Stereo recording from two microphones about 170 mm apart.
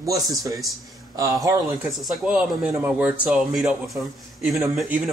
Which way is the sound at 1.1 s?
20° right (ahead or behind).